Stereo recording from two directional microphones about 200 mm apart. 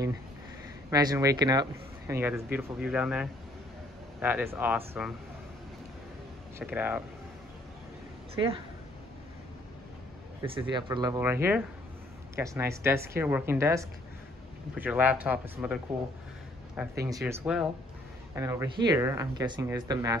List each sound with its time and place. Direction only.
0.8 s speech: 15° right (ahead or behind)
6.6 s speech: 10° right (ahead or behind)
8.4 s speech: 25° right (ahead or behind)
10.4 s speech: 25° right (ahead or behind); by 15.8 s 10° right (ahead or behind)
16.9 s speech: 15° right (ahead or behind)
17.3 s speech: 5° right (ahead or behind)
18.3 s speech: 15° right (ahead or behind)